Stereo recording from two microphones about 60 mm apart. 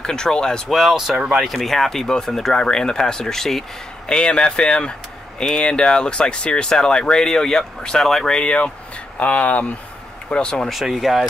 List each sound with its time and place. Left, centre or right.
0.0 s speech: centre
0.7 s speech: centre
4.1 s speech: centre
8.4 s speech: centre
10.3 s speech: centre
10.7 s speech: centre